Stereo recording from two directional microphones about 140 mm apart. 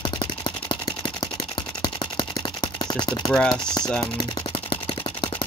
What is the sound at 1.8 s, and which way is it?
Camera, 30° left (ahead or behind).